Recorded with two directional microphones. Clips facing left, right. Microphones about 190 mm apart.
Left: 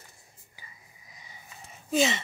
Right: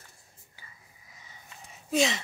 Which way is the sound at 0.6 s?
15° left (ahead or behind).